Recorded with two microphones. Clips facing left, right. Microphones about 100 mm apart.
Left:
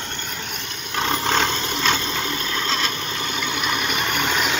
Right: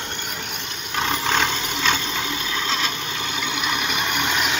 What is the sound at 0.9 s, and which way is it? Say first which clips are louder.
Vehicle: left 1 dB; 5° right (ahead or behind).